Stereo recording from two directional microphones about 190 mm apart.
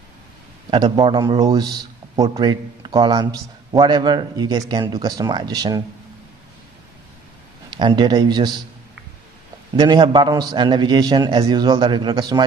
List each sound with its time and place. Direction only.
0.7 s a man's voice: 25° right (ahead or behind)
7.7 s a man's voice: 25° right (ahead or behind)
9.8 s a man's voice: 25° right (ahead or behind)